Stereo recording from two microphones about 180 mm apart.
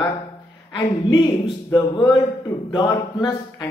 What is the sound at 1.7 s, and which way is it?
A man's voice, 20° left (ahead or behind).